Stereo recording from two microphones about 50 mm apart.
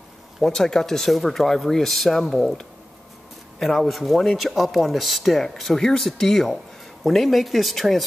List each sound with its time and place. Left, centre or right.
0.4 s speech: centre
3.5 s speech: centre